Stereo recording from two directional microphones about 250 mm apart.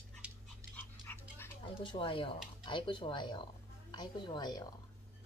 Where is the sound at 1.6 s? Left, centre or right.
Centre.